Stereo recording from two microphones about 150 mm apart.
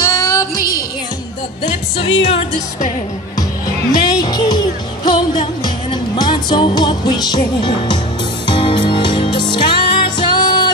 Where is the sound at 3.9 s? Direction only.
25° left (ahead or behind).